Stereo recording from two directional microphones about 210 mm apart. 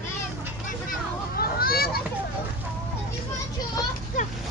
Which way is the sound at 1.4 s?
45° left (ahead or behind).